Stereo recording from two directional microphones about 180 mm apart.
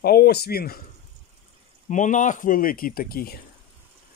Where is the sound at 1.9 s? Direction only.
45° left (ahead or behind).